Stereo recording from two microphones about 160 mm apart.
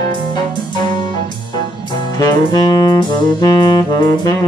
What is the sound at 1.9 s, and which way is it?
Saxophone, 25° left (ahead or behind).